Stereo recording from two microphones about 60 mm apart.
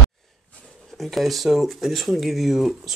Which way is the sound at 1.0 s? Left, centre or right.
Centre.